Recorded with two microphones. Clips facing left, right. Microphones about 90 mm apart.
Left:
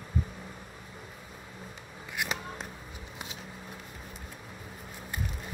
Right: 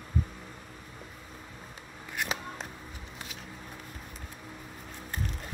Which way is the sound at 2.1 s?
5° left (ahead or behind).